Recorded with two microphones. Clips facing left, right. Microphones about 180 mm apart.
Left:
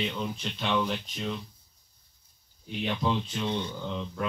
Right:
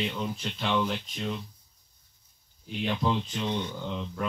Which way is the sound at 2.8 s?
Centre (ahead or behind).